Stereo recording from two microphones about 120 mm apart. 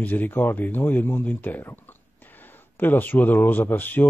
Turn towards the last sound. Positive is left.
turn(degrees=15)  # may be behind; listen again after turning